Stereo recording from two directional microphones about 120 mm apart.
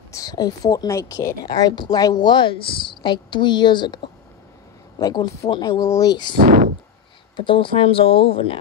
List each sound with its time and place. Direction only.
0.1 s speech: 30° left (ahead or behind)
7.3 s speech: 45° left (ahead or behind)